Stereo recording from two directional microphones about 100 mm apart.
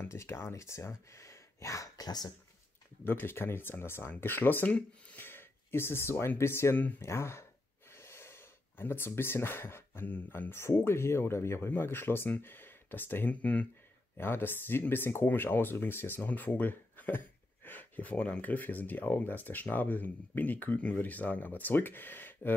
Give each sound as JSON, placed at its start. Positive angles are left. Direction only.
{"t": 0.0, "sound": "speech", "side_deg": 25}
{"t": 3.0, "sound": "speech", "side_deg": 20}